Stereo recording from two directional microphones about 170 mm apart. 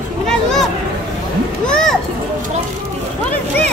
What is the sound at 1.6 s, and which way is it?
Speech, 5° left (ahead or behind).